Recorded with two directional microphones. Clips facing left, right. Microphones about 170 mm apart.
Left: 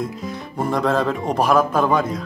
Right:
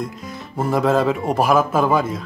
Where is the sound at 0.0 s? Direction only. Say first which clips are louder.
Left 2 dB; centre (ahead or behind).